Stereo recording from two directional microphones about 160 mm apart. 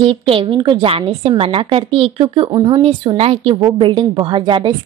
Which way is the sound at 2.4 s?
25° right (ahead or behind).